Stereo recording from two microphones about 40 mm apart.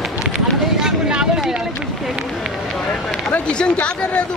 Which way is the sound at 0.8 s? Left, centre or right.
Right.